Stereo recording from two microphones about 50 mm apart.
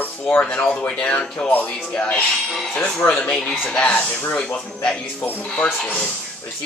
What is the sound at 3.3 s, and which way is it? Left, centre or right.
Speech, centre.